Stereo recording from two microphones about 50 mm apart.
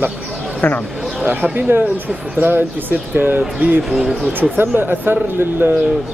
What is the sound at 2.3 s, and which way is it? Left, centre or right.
Speech, right.